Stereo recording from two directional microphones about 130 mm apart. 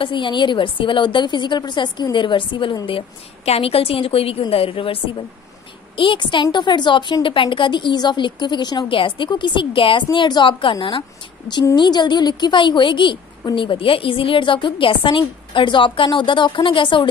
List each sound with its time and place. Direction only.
0.0 s a woman's voice: 40° left (ahead or behind)